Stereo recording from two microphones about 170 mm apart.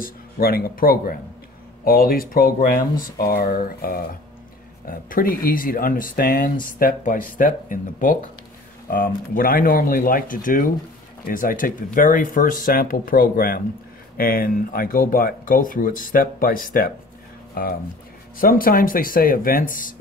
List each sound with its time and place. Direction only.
0.0 s speech: 60° left (ahead or behind)